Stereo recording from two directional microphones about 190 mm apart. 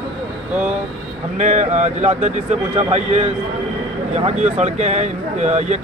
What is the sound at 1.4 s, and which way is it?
Speech, 40° right (ahead or behind).